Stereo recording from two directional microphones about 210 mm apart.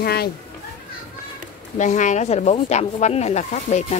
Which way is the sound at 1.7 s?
35° left (ahead or behind).